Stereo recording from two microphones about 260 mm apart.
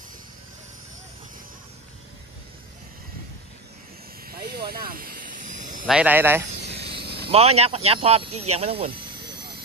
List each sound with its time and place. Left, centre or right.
4.3 s vehicle: right
5.9 s speech: centre
6.9 s a sound: right
7.2 s speech: right